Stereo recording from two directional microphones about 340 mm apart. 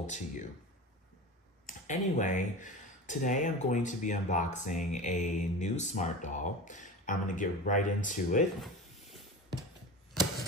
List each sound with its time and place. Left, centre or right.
0.0 s speech: left
1.7 s speech: left
8.5 s a sound: centre